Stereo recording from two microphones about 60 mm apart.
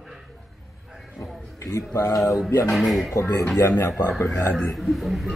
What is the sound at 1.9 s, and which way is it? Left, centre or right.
Speech, left.